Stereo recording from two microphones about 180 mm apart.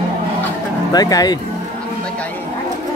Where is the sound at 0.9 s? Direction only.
20° left (ahead or behind).